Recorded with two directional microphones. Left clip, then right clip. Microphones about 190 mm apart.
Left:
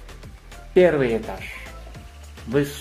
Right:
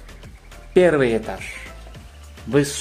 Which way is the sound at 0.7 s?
30° right (ahead or behind).